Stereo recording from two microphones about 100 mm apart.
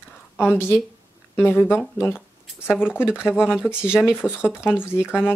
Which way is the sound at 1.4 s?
20° left (ahead or behind).